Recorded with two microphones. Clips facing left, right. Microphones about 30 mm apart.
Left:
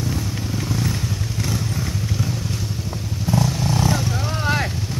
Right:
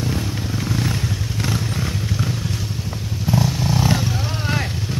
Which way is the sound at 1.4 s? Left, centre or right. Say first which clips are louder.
Right 2 dB; right.